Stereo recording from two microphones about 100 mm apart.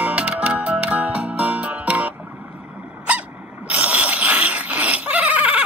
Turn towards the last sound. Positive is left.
turn(degrees=-15)  # may be behind; listen again after turning